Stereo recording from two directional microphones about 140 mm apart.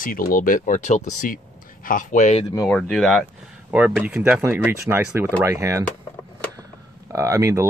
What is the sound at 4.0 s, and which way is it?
Speech, 10° right (ahead or behind).